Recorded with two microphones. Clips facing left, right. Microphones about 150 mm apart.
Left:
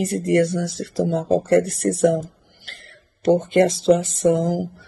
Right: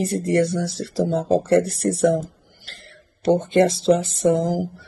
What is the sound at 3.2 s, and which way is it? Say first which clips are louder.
Speech: left 1 dB; 30° right (ahead or behind).